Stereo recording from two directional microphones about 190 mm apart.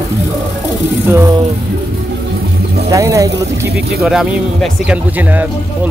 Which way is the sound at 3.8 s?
55° right (ahead or behind).